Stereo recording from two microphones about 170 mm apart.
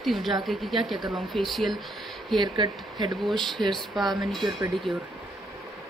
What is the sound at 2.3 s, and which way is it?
Speech, 25° right (ahead or behind).